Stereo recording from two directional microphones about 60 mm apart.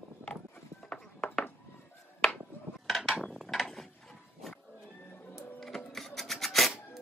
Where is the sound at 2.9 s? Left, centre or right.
Centre.